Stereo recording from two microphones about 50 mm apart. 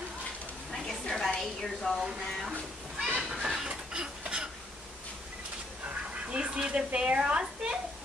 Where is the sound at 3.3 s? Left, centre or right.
Centre.